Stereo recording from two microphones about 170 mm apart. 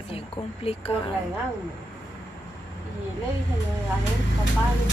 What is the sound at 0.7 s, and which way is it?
Speech, 35° left (ahead or behind).